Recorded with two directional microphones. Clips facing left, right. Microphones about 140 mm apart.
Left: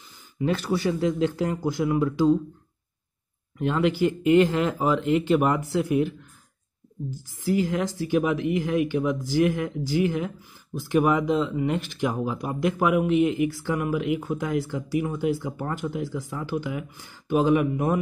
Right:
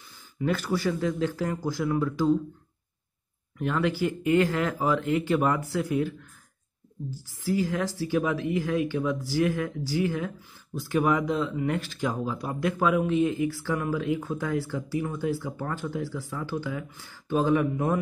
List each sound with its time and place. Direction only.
0.5 s speech: 20° left (ahead or behind)
3.5 s a woman's voice: 20° left (ahead or behind)